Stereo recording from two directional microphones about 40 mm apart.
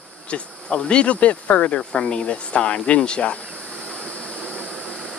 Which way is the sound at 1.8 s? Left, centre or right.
Left.